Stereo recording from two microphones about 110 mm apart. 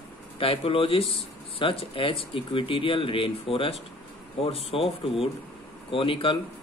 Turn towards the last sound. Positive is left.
turn(degrees=55)  # may be behind; listen again after turning